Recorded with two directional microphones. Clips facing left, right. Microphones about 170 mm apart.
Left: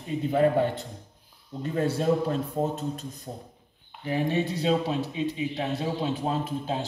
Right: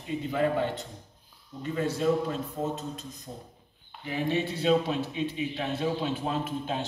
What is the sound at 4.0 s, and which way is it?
Speech, 40° left (ahead or behind).